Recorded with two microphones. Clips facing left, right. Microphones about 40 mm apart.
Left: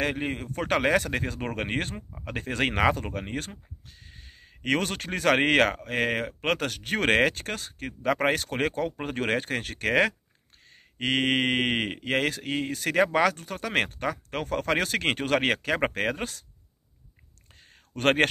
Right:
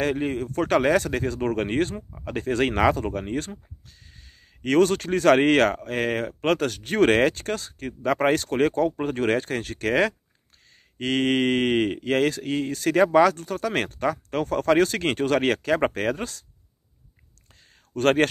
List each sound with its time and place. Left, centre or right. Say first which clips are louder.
0.0 s speech: right 4 dB; centre
3.3 s a sound: right 5 dB; centre
4.6 s speech: right 8 dB; centre
17.9 s speech: right 2 dB; centre